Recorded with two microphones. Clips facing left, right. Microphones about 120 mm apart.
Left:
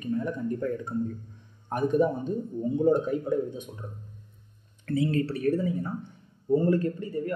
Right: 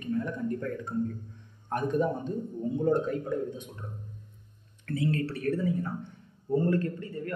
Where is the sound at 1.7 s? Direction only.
5° left (ahead or behind).